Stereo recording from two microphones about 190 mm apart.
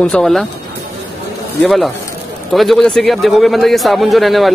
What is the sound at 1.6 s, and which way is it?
Speech, centre (ahead or behind).